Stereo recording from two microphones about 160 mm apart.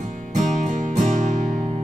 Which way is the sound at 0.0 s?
50° right (ahead or behind).